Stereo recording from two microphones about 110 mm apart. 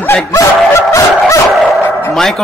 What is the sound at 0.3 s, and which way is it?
Dog, 30° left (ahead or behind).